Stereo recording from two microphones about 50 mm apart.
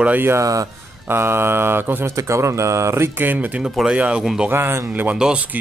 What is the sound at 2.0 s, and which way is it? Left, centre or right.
Speech, right.